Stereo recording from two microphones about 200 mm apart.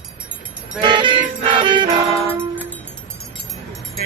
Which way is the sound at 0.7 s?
25° right (ahead or behind).